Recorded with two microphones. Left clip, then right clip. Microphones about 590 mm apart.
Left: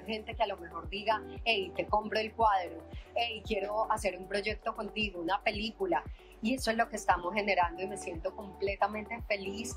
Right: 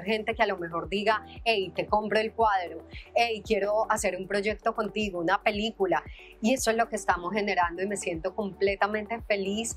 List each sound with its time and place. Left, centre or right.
0.0 s a woman's voice: right